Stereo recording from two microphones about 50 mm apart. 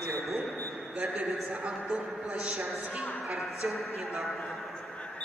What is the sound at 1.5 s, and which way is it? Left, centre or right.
A man's voice, centre.